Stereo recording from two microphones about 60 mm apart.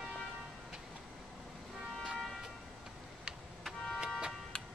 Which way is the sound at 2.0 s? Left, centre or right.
Centre.